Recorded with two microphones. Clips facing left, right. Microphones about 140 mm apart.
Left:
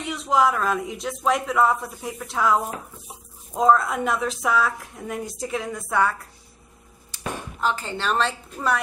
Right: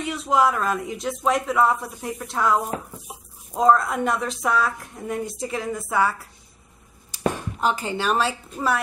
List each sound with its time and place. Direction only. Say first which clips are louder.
0.0 s speech: even; centre (ahead or behind)
7.1 s a sound: right 10 dB; 15° right (ahead or behind)
7.6 s a woman's voice: right 2 dB; 15° right (ahead or behind)